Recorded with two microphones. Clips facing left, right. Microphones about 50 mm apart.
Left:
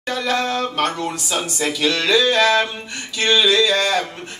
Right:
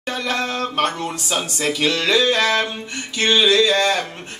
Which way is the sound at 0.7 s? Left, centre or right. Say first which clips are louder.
Even; right.